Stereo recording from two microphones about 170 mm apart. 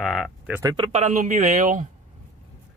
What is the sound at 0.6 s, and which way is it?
Speech, 25° right (ahead or behind).